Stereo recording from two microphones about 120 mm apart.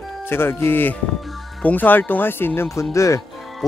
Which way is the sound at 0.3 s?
20° left (ahead or behind).